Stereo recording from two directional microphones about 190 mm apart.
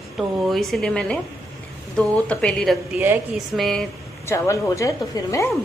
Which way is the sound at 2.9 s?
10° right (ahead or behind).